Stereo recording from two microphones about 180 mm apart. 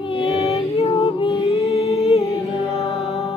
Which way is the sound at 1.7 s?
35° left (ahead or behind).